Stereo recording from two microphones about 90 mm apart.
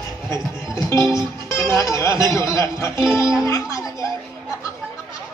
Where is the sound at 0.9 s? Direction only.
35° left (ahead or behind).